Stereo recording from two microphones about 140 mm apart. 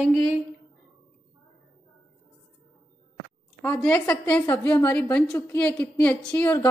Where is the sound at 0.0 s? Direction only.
Centre (ahead or behind).